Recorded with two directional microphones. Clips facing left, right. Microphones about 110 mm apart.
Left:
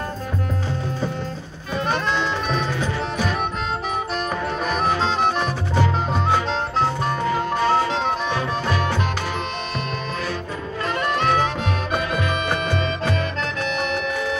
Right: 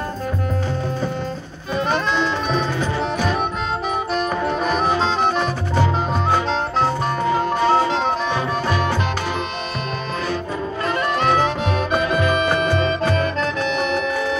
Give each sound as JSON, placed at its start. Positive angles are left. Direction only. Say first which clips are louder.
{"t": 4.6, "sound": "music", "louder": "right 1 dB", "side_deg": 0}
{"t": 7.3, "sound": "music", "louder": "right 3 dB", "side_deg": -25}
{"t": 11.1, "sound": "music", "louder": "right 2 dB", "side_deg": -35}